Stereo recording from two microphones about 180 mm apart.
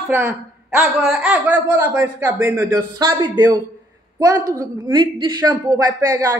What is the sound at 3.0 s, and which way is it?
Speech, 25° right (ahead or behind).